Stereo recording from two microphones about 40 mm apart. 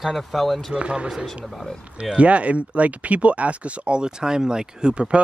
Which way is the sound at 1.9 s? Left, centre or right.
Right.